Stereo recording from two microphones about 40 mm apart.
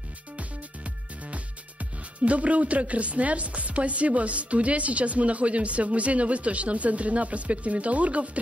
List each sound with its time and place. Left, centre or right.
0.4 s music: right